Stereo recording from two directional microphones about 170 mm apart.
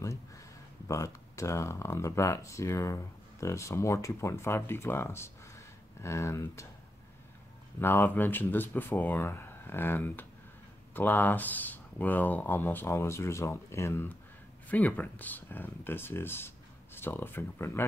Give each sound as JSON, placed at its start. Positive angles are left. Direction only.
{"t": 0.0, "sound": "speech", "side_deg": 20}
{"t": 7.8, "sound": "speech", "side_deg": 15}